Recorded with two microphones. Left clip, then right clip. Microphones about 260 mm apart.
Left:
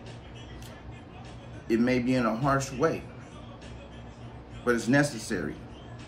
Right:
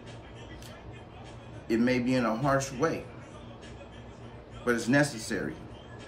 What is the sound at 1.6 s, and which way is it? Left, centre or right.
Speech, centre.